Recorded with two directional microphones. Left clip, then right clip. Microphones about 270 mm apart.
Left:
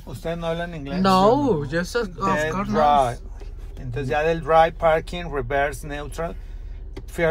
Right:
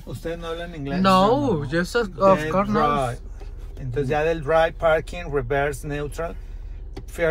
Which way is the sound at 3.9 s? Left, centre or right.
Left.